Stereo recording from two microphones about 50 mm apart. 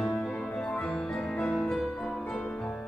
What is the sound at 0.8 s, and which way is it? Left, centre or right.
Music, centre.